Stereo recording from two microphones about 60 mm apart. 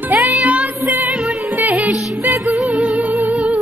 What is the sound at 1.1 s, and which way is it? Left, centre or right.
Music, centre.